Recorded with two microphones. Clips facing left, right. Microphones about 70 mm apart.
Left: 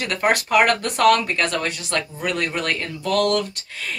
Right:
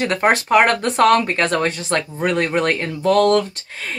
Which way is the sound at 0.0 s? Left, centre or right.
Right.